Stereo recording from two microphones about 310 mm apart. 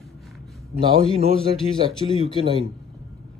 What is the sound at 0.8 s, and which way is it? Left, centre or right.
Speech, centre.